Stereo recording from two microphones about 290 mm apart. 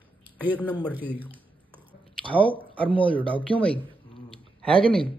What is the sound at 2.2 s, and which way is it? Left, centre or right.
Speech, centre.